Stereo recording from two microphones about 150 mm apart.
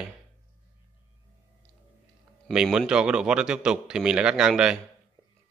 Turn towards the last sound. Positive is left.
turn(degrees=-5)  # may be behind; listen again after turning